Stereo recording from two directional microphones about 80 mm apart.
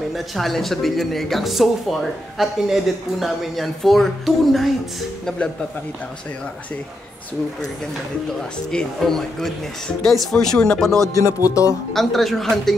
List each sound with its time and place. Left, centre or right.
0.1 s speech: centre
8.7 s speech: centre
11.1 s music: left
11.9 s speech: centre